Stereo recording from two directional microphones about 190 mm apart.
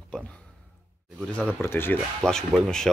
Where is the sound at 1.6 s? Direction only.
10° left (ahead or behind).